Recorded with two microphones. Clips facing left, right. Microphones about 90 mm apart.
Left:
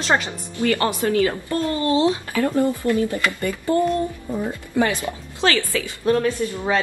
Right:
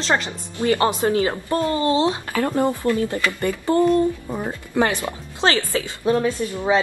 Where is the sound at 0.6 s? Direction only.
20° right (ahead or behind).